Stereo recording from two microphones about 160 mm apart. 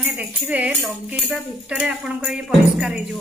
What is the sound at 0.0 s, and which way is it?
Speech, 5° right (ahead or behind).